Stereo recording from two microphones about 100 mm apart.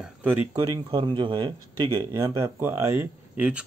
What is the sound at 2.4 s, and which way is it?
Speech, 25° right (ahead or behind).